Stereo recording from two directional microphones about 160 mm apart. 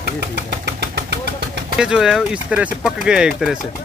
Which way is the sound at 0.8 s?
90° right.